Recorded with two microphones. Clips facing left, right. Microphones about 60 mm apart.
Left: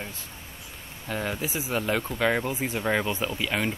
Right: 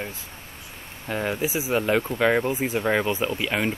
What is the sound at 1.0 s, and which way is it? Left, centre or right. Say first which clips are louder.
Speech: right 4 dB; centre.